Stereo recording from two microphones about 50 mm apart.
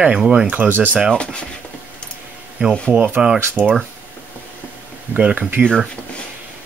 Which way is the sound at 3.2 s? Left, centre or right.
Centre.